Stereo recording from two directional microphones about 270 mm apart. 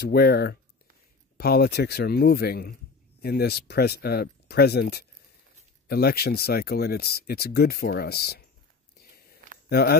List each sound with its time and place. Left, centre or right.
0.0 s a man's voice: left
9.7 s speech: left